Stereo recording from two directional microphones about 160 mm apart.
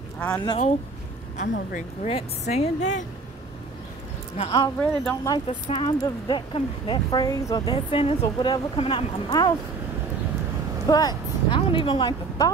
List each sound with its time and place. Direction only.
1.3 s a woman's voice: 50° left (ahead or behind)
2.0 s a woman's voice: 40° left (ahead or behind)
4.4 s speech: 30° left (ahead or behind)
4.7 s speech: 10° left (ahead or behind)
5.5 s speech: 35° left (ahead or behind)
10.9 s speech: 25° left (ahead or behind)